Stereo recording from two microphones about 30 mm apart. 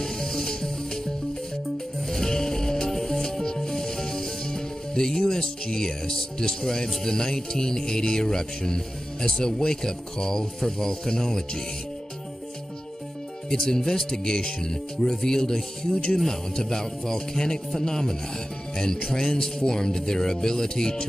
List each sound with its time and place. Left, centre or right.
0.0 s music: centre
5.3 s a man's voice: centre
13.5 s a man's voice: centre
15.9 s speech: left
16.3 s a man's voice: centre
19.1 s a man's voice: centre